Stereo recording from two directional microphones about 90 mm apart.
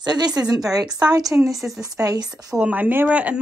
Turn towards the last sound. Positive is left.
turn(degrees=-15)  # may be behind; listen again after turning